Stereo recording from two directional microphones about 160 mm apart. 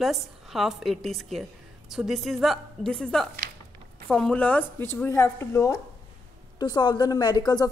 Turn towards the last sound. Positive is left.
turn(degrees=25)  # may be behind; listen again after turning